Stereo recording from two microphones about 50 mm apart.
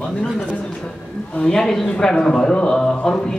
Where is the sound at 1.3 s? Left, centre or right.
Centre.